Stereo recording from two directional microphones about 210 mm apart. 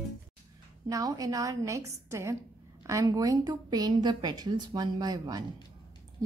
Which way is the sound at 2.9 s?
15° right (ahead or behind).